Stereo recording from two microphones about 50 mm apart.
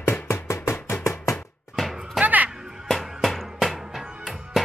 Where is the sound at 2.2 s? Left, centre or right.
Right.